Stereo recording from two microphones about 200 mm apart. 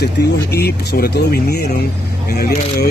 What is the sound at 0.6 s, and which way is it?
Speech, 55° left (ahead or behind).